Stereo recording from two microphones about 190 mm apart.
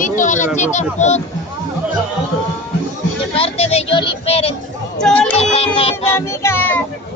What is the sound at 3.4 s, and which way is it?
Child singing, 30° left (ahead or behind).